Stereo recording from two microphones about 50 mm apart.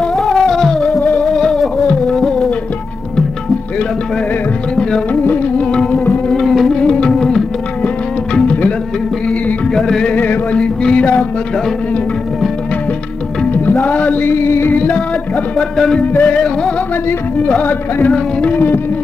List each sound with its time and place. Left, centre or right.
0.0 s music: centre
1.9 s music: centre
5.6 s music: left
6.4 s music: centre
6.8 s music: centre
9.8 s music: centre
10.1 s music: left
10.6 s music: centre
13.5 s music: left
14.3 s music: left
14.8 s music: left
16.0 s music: left
16.3 s music: centre
17.6 s music: left